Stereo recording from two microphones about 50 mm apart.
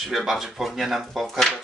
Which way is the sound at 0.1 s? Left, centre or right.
Centre.